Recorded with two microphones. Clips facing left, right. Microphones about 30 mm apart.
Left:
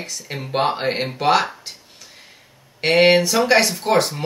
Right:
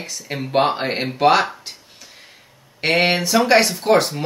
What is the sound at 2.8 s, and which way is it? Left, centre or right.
Speech, centre.